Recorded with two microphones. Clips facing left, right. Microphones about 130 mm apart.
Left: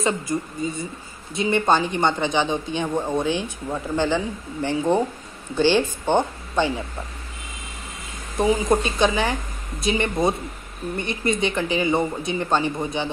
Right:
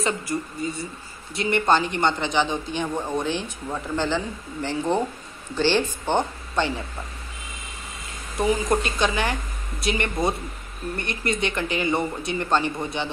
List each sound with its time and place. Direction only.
0.0 s speech: 20° left (ahead or behind)
8.4 s speech: 20° left (ahead or behind)